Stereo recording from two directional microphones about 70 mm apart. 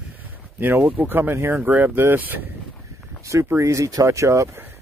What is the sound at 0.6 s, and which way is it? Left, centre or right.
Speech, right.